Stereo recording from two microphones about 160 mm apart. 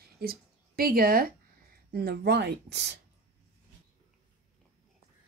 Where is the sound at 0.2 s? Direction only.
65° right (ahead or behind); by 2.9 s 90° right.